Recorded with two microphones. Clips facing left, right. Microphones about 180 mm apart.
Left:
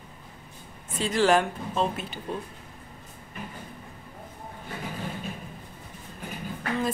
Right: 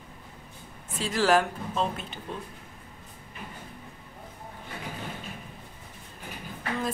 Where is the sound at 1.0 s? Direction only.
Centre (ahead or behind).